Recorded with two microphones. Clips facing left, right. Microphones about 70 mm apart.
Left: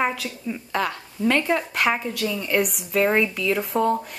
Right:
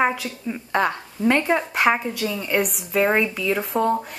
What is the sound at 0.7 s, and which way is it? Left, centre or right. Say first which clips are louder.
A woman's voice: right 5 dB; right.